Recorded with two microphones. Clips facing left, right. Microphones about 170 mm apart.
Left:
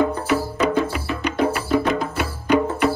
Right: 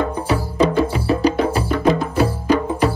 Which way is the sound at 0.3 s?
35° right (ahead or behind).